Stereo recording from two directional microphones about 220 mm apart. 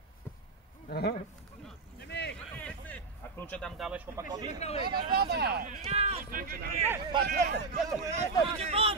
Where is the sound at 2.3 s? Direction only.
5° left (ahead or behind); by 4.6 s 20° right (ahead or behind).